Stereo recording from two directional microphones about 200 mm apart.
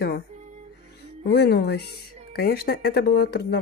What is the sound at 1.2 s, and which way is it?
Speech, 60° left (ahead or behind).